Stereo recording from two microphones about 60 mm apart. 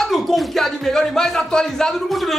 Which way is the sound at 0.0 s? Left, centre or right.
Centre.